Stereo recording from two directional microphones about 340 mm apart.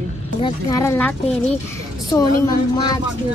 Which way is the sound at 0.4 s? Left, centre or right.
Centre.